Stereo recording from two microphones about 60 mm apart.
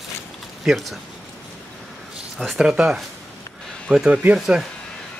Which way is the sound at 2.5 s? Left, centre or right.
Centre.